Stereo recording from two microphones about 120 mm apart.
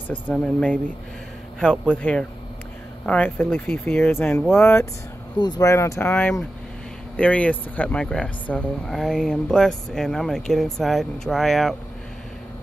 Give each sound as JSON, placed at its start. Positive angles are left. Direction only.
{"t": 0.1, "sound": "speech", "side_deg": 10}
{"t": 5.4, "sound": "speech", "side_deg": 30}